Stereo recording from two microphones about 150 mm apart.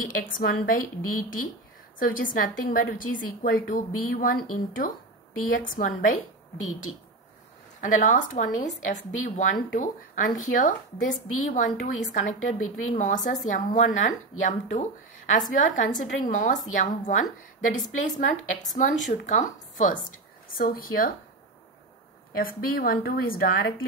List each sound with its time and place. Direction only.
0.0 s a woman's voice: 65° left (ahead or behind)
6.9 s speech: 40° left (ahead or behind)
7.8 s a woman's voice: 60° left (ahead or behind)
15.6 s a woman's voice: 60° left (ahead or behind)
20.5 s a woman's voice: 70° left (ahead or behind)
22.4 s a woman's voice: 75° left (ahead or behind)